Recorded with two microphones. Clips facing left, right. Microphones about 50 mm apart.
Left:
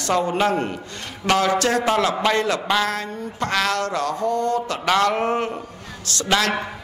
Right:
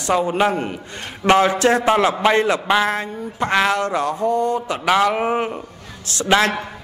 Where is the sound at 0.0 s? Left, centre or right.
Centre.